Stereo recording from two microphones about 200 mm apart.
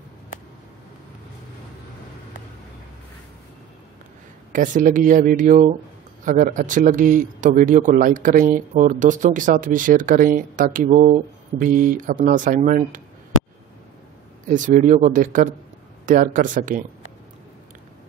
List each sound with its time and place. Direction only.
4.5 s speech: 40° right (ahead or behind)
14.5 s speech: 40° right (ahead or behind)